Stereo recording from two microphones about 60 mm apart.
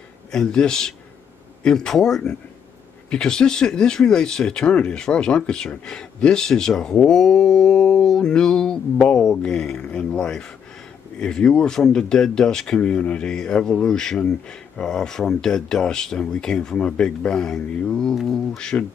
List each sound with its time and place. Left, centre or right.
0.3 s speech: centre
7.1 s a sound: centre
9.8 s speech: left
10.1 s speech: centre